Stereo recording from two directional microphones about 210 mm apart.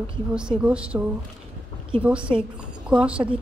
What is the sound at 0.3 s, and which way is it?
Speech, 5° right (ahead or behind).